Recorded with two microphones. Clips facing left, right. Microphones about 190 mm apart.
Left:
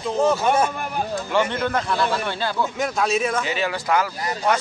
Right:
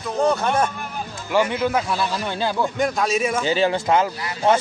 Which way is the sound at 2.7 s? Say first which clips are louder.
Right 1 dB; centre (ahead or behind).